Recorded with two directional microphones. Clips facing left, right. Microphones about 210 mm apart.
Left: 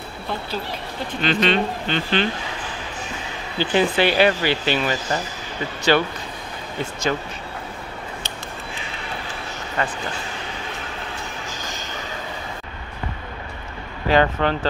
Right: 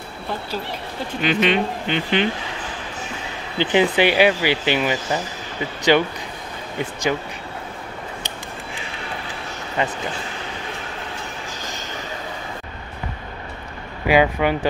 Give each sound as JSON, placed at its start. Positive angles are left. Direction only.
{"t": 1.2, "sound": "speech", "side_deg": -10}
{"t": 3.5, "sound": "speech", "side_deg": -15}
{"t": 9.8, "sound": "speech", "side_deg": -20}
{"t": 14.0, "sound": "speech", "side_deg": -10}